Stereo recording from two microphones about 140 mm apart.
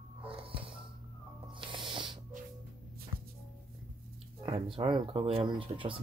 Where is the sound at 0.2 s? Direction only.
40° right (ahead or behind).